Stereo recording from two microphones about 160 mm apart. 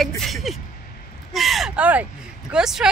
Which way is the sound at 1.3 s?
Centre (ahead or behind).